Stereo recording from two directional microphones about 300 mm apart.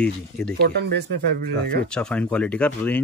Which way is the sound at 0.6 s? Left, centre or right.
Right.